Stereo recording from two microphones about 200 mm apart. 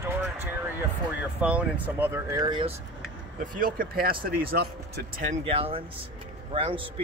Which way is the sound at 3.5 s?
45° right (ahead or behind).